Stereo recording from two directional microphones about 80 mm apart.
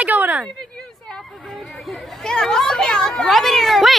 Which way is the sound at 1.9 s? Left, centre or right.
Centre.